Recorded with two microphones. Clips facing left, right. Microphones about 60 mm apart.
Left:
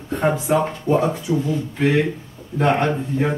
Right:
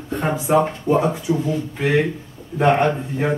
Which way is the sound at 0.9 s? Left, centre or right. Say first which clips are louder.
Even; right.